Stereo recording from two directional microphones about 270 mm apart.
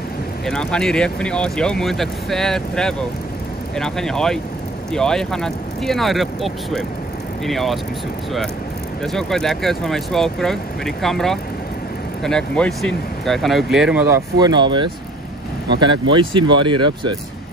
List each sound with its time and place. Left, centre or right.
0.5 s speech: centre
9.0 s speech: centre
16.1 s speech: centre